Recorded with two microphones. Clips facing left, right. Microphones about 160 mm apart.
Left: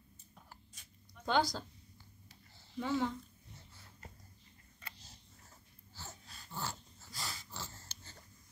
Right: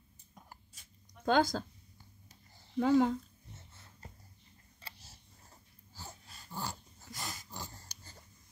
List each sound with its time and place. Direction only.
0.3 s a sound: 15° right (ahead or behind)
1.2 s a woman's voice: 50° right (ahead or behind)
2.7 s speech: 50° right (ahead or behind)
4.9 s camera: 10° right (ahead or behind)
5.9 s dog: 10° right (ahead or behind)